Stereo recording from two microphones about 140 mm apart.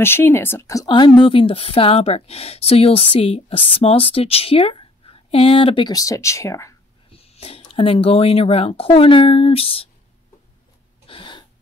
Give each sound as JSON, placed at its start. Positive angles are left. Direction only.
{"t": 0.0, "sound": "speech", "side_deg": 15}
{"t": 7.1, "sound": "speech", "side_deg": 45}
{"t": 11.1, "sound": "a sound", "side_deg": 35}